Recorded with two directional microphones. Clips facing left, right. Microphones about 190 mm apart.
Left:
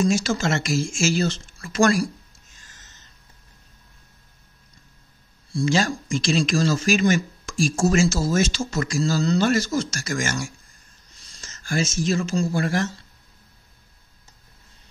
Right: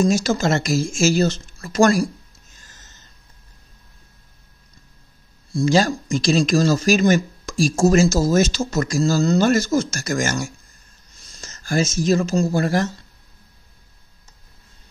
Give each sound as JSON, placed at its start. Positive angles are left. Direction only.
{"t": 0.0, "sound": "speech", "side_deg": -40}
{"t": 5.5, "sound": "speech", "side_deg": -40}